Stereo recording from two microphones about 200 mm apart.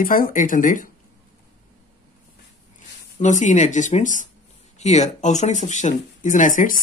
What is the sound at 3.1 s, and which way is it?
Speech, 40° left (ahead or behind).